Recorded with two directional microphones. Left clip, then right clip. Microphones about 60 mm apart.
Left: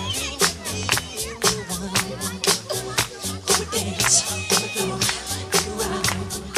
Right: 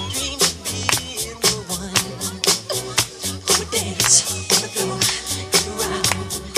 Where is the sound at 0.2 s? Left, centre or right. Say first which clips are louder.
Right 3 dB; right.